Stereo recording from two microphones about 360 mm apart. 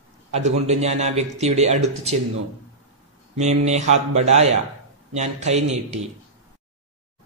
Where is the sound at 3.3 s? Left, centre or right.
Centre.